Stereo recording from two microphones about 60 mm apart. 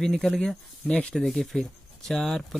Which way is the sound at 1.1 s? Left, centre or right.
Centre.